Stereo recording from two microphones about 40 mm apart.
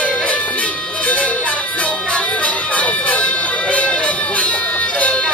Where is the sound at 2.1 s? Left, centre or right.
Left.